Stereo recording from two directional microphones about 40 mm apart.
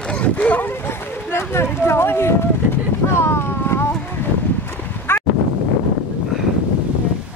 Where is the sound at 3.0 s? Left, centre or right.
Left.